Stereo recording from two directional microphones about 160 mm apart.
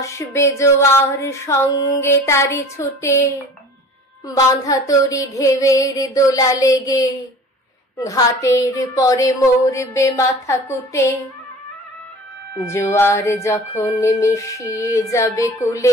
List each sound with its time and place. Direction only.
0.0 s a sound: 20° left (ahead or behind)
4.6 s music: 20° left (ahead or behind)
12.5 s music: 15° left (ahead or behind)